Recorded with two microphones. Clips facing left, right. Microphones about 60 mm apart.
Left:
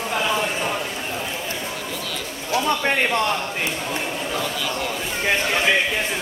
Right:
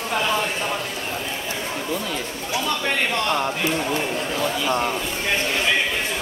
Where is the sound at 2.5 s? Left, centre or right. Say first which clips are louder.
Left 3 dB; left.